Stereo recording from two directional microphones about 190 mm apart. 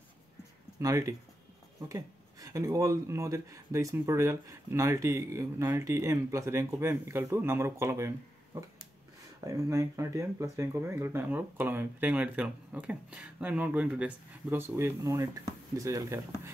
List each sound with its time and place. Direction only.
0.7 s speech: 15° right (ahead or behind)
9.4 s speech: 15° right (ahead or behind)